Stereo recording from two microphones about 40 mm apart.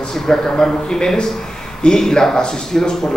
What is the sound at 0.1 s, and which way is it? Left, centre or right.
A man's voice, centre.